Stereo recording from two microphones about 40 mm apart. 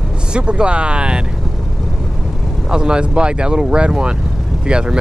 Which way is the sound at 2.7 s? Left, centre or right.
Right.